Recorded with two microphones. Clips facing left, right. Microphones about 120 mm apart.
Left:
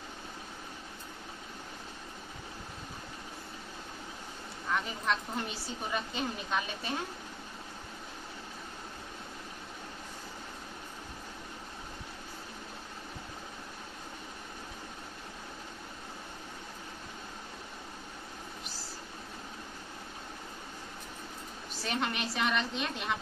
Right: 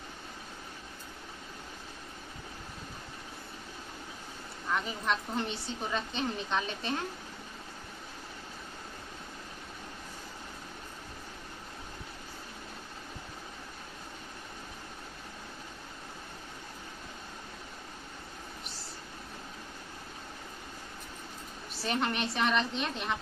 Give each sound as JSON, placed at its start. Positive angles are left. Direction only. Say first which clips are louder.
{"t": 4.7, "sound": "a woman's voice", "louder": "even", "side_deg": 0}
{"t": 21.8, "sound": "a woman's voice", "louder": "right 2 dB", "side_deg": 0}